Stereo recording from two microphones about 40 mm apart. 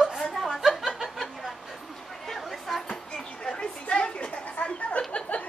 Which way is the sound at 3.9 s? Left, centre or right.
Left.